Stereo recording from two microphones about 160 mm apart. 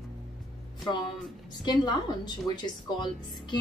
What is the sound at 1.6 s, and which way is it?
Speech, 25° left (ahead or behind).